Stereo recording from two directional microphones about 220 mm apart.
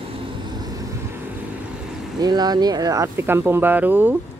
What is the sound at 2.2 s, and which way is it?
Speech, 20° right (ahead or behind).